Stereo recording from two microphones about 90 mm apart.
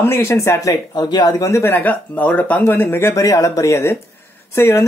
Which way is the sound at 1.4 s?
30° left (ahead or behind).